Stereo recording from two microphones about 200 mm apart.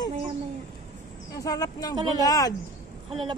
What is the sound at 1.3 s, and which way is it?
A woman's voice, 15° left (ahead or behind).